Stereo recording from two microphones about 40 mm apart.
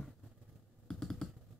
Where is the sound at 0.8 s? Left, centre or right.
Centre.